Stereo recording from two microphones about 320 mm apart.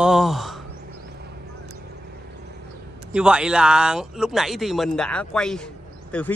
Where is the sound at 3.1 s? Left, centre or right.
Centre.